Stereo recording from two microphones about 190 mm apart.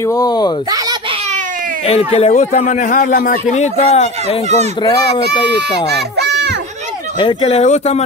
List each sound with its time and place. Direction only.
0.1 s a child's voice: 20° left (ahead or behind)
1.9 s a man's voice: 30° left (ahead or behind)
6.1 s children playing: 60° right (ahead or behind)
7.2 s a man's voice: 30° left (ahead or behind)